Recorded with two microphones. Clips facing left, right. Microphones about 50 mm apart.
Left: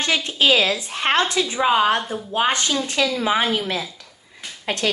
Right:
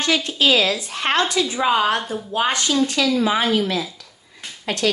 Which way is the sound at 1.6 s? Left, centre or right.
Centre.